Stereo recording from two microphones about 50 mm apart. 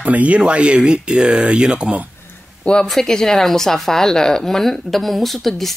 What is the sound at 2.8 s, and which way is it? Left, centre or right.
Speech, centre.